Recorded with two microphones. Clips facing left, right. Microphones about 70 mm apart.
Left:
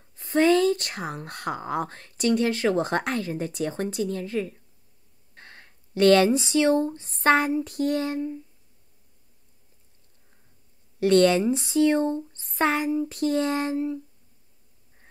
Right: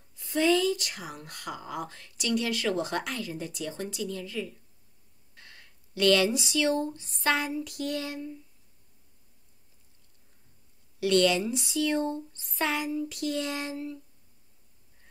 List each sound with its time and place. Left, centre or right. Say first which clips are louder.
0.1 s speech: left 5 dB; left
11.0 s speech: left 5 dB; left